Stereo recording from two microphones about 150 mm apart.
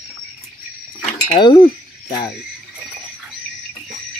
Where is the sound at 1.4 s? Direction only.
30° left (ahead or behind).